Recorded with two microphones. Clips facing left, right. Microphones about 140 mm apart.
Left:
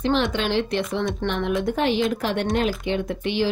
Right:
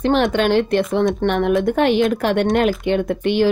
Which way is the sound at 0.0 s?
55° right (ahead or behind).